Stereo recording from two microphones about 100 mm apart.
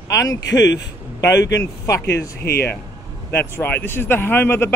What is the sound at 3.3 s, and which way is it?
Speech, 20° left (ahead or behind).